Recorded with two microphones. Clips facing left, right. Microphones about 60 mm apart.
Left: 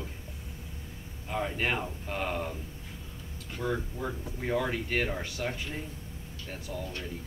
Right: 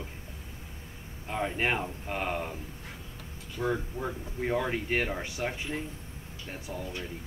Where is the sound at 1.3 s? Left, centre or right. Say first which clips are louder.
Right 1 dB; centre.